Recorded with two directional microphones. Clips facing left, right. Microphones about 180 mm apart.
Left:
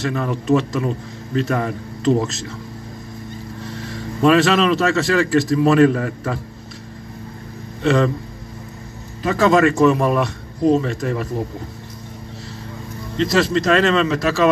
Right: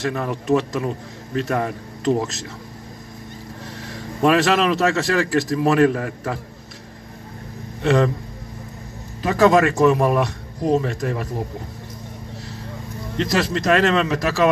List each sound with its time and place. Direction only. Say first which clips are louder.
0.0 s a man's voice: left 2 dB; 15° right (ahead or behind)
4.2 s a man's voice: left 2 dB; 15° right (ahead or behind)
7.8 s a man's voice: left 1 dB; 15° right (ahead or behind)
9.3 s a man's voice: even; 15° right (ahead or behind)
13.2 s a man's voice: left 4 dB; 15° right (ahead or behind)